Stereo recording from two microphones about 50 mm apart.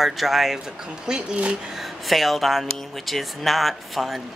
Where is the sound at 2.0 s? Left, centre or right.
Centre.